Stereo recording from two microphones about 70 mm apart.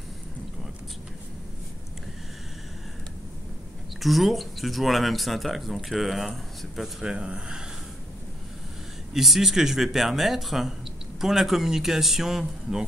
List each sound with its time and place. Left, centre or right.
4.0 s speech: centre
7.0 s speech: centre
9.1 s speech: centre